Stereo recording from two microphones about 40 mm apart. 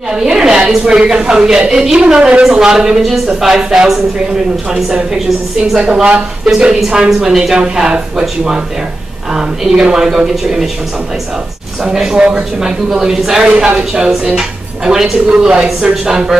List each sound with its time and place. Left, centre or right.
0.1 s speech: centre
5.8 s speech: right
11.8 s speech: centre
12.6 s speech: centre
15.2 s speech: right